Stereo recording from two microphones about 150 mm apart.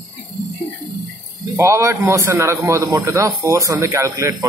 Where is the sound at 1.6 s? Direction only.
20° right (ahead or behind).